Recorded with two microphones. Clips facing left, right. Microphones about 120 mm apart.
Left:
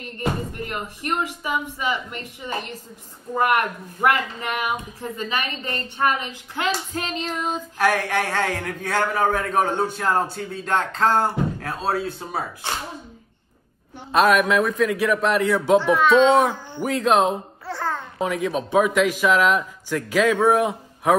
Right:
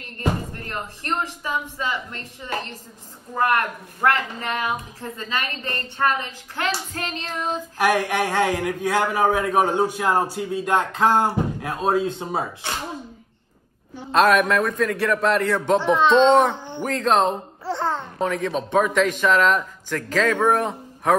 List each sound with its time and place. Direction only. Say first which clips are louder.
0.0 s a woman's voice: even; 15° left (ahead or behind)
7.7 s a man's voice: right 1 dB; 15° right (ahead or behind)
14.1 s a man's voice: even; centre (ahead or behind)
15.8 s a child's voice: even; 25° right (ahead or behind)
16.3 s a man's voice: right 1 dB; 5° left (ahead or behind)
17.6 s babbling: right 3 dB; 25° right (ahead or behind)
18.1 s a woman's voice: even; 10° left (ahead or behind)